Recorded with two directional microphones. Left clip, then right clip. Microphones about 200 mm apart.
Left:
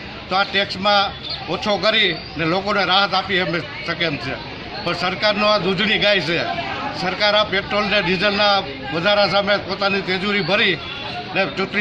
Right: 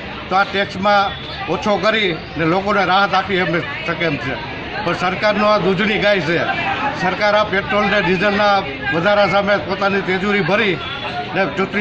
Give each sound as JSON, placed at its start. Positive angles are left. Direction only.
{"t": 0.3, "sound": "a man's voice", "side_deg": 5}